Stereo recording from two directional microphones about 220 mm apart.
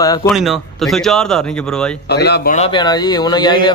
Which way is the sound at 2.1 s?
50° left (ahead or behind).